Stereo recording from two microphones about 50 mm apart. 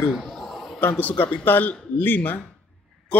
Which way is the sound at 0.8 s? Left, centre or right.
Left.